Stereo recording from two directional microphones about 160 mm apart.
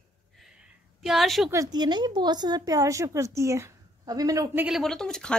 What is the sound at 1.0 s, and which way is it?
Speech, centre (ahead or behind).